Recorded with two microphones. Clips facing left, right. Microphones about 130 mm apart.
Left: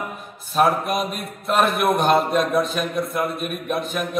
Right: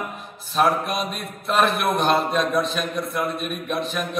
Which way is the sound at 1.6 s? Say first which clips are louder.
Left 2 dB; 50° left (ahead or behind).